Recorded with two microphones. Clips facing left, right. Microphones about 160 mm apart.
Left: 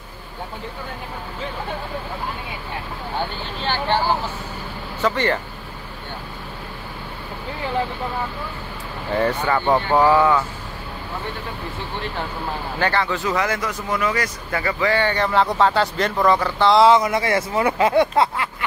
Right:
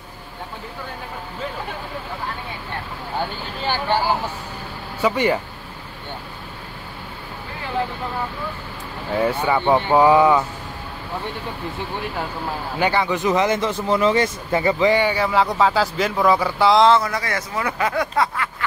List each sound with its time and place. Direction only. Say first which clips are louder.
5.0 s speech: right 2 dB; 10° right (ahead or behind)
9.1 s speech: right 1 dB; 10° right (ahead or behind)
12.7 s speech: right 2 dB; 10° right (ahead or behind)
16.8 s speech: left 2 dB; 15° left (ahead or behind)